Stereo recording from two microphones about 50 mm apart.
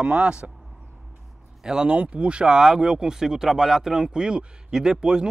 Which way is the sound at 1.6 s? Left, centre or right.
Centre.